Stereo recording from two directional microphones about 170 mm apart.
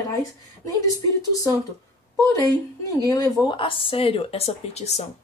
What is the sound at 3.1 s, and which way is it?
Speech, 20° left (ahead or behind).